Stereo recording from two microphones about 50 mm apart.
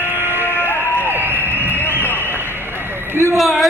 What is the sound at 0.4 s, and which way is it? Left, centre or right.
Music, left.